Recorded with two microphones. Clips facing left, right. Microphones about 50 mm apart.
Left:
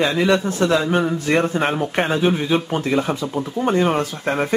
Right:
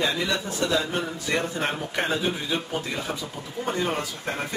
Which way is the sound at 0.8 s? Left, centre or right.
Left.